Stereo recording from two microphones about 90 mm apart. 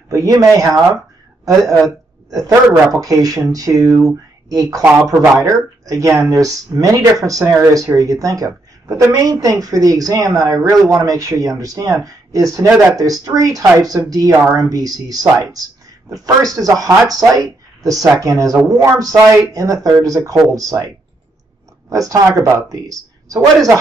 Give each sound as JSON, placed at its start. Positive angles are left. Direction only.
{"t": 0.1, "sound": "speech", "side_deg": -40}